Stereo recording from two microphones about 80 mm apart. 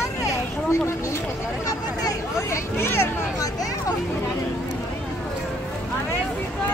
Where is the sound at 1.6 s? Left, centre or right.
Left.